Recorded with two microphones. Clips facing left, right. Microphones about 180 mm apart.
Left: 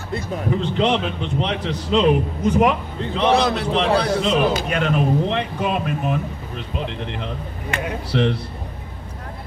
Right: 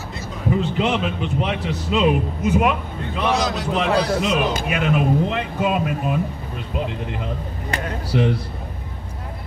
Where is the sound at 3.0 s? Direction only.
30° left (ahead or behind).